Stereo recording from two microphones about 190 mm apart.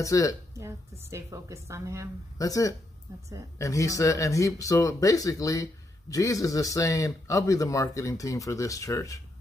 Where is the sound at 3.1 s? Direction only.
15° right (ahead or behind).